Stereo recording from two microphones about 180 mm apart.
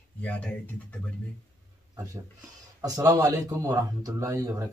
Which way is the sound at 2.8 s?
20° right (ahead or behind).